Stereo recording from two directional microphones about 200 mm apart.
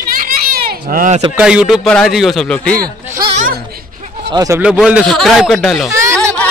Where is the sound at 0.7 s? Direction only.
45° right (ahead or behind).